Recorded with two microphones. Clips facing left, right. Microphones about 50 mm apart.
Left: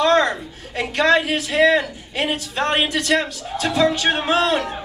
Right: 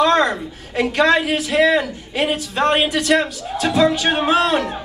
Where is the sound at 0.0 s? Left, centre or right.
Centre.